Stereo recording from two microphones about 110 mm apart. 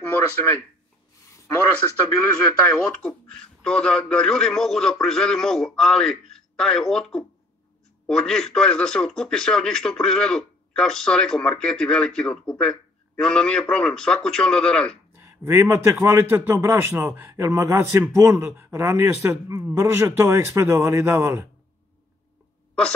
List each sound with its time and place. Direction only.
0.1 s speech: 15° left (ahead or behind)
2.6 s a man's voice: 10° left (ahead or behind)
15.1 s a sound: 25° right (ahead or behind)
15.6 s a man's voice: 25° right (ahead or behind)